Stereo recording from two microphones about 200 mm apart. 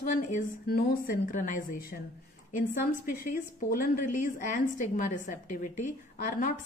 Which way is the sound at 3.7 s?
45° left (ahead or behind).